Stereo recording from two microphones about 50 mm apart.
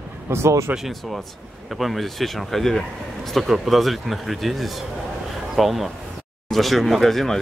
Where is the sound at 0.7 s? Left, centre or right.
Centre.